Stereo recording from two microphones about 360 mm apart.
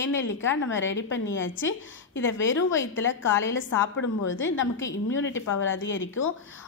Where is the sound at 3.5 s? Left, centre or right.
Left.